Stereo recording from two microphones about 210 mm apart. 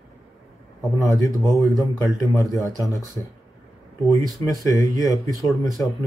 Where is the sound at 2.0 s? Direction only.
Centre (ahead or behind).